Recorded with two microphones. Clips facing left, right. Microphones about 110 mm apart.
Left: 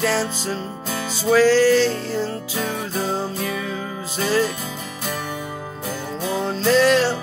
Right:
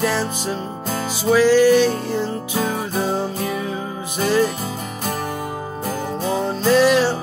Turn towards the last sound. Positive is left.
turn(degrees=-10)  # may be behind; listen again after turning